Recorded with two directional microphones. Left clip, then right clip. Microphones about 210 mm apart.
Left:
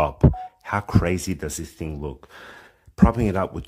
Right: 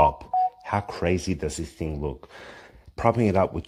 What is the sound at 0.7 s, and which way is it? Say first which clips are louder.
Speech: left 2 dB; 25° left (ahead or behind).